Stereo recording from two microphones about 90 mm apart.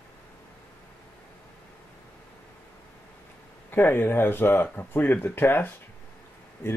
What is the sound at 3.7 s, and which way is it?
Speech, 25° left (ahead or behind).